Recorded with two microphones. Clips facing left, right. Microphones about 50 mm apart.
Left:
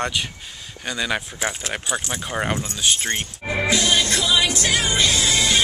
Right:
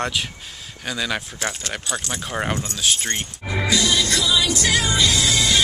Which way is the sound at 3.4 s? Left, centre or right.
Left.